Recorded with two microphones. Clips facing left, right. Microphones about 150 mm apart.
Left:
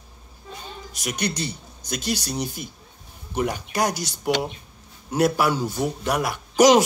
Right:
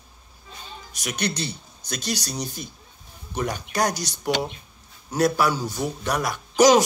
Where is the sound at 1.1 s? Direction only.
15° left (ahead or behind).